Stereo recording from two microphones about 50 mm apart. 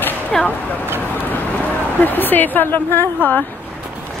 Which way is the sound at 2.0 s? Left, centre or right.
Left.